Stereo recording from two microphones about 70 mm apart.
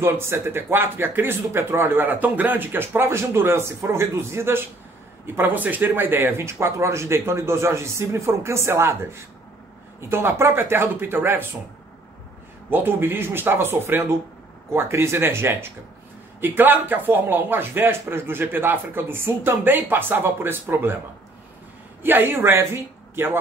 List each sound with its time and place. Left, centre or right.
0.0 s speech: right
12.6 s speech: right
22.0 s a man's voice: right